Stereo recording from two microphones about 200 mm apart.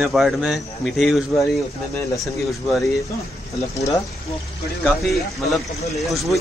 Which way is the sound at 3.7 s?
15° left (ahead or behind).